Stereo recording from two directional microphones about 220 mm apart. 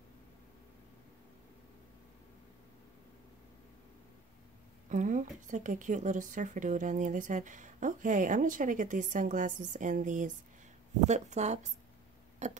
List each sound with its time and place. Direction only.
4.8 s a woman's voice: 35° right (ahead or behind)